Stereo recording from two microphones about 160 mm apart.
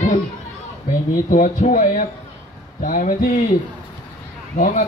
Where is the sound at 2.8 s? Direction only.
55° left (ahead or behind).